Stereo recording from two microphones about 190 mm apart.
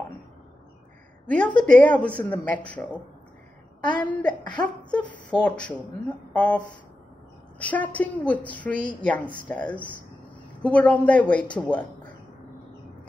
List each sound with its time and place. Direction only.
1.2 s a woman's voice: 10° left (ahead or behind)